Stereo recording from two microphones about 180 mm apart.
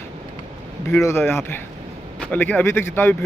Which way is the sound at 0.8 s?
15° left (ahead or behind).